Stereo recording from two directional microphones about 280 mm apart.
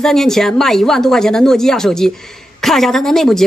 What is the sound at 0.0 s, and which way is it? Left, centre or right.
Speech, centre.